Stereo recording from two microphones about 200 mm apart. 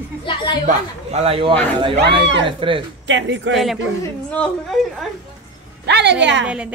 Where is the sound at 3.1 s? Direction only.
65° right (ahead or behind).